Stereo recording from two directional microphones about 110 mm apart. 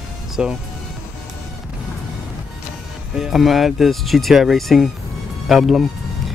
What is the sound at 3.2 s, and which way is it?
Speech, 5° right (ahead or behind).